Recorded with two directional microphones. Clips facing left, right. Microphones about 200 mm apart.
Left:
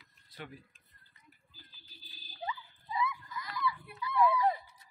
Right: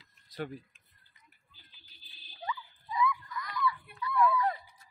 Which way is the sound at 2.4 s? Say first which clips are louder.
Right 1 dB; 25° left (ahead or behind).